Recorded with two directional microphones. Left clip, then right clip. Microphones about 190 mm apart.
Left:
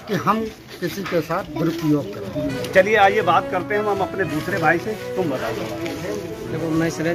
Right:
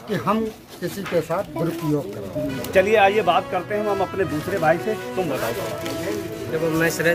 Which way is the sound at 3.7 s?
30° right (ahead or behind).